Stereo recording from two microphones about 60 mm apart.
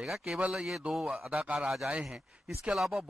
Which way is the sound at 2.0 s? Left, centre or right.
Centre.